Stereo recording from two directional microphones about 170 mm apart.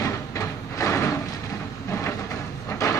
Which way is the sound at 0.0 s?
20° left (ahead or behind).